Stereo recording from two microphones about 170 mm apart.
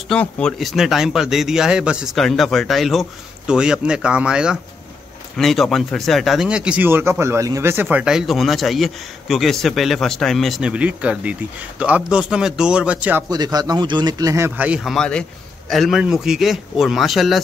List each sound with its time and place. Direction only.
0.1 s speech: 5° left (ahead or behind)
13.3 s a man's voice: 25° right (ahead or behind); by 17.4 s centre (ahead or behind)